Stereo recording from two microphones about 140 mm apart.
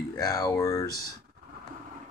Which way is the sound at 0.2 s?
25° left (ahead or behind).